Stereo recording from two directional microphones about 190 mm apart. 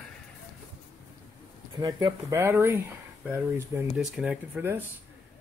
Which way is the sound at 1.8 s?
20° right (ahead or behind).